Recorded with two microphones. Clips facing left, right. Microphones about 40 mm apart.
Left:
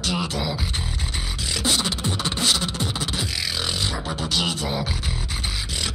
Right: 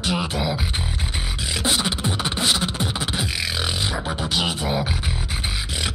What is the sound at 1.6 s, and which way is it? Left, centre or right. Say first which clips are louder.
Beatboxing: right 1 dB; centre.